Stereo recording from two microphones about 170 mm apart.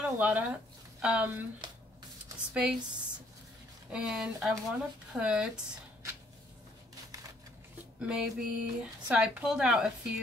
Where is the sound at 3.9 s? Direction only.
5° right (ahead or behind).